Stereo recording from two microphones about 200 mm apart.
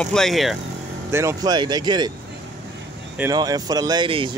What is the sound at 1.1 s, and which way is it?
Speech, 15° right (ahead or behind).